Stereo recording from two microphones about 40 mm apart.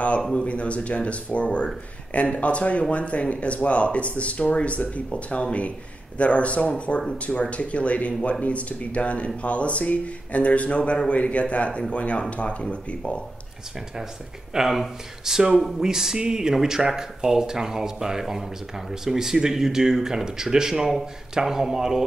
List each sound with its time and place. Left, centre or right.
0.2 s speech: centre
0.5 s speech: left
14.5 s speech: centre